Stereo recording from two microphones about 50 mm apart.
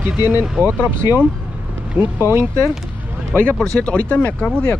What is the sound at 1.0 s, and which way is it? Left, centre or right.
Speech, right.